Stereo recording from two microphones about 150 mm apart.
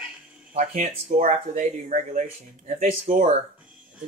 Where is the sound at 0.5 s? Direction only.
50° right (ahead or behind).